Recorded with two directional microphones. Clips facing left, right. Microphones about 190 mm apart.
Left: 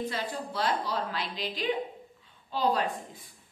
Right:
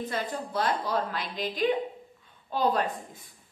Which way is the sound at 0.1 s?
50° right (ahead or behind).